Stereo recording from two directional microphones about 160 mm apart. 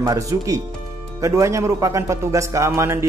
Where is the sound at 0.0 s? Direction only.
20° right (ahead or behind).